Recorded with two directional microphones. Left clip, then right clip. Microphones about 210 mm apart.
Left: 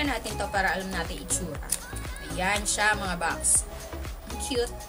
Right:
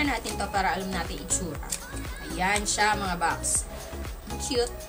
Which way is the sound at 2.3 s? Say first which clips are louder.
Right 1 dB; 5° left (ahead or behind).